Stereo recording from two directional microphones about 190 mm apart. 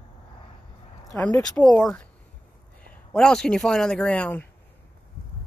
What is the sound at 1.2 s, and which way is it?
Speech, 5° left (ahead or behind).